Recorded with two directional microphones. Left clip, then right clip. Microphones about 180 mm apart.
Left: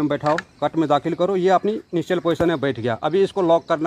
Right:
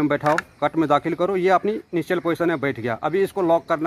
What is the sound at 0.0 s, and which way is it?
Speech, 25° left (ahead or behind).